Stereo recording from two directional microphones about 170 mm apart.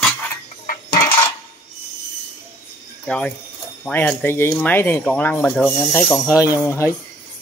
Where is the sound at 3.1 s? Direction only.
5° left (ahead or behind).